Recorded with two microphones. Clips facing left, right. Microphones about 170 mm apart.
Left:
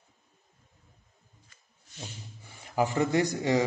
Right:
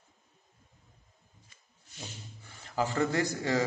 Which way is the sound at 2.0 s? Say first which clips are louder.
Left 2 dB; 10° left (ahead or behind).